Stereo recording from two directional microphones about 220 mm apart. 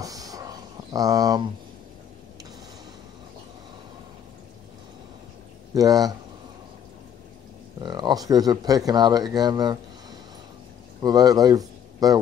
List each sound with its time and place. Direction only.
0.0 s a sound: 15° right (ahead or behind)
5.8 s speech: 15° right (ahead or behind)
7.8 s speech: 20° right (ahead or behind)
11.0 s speech: 15° right (ahead or behind)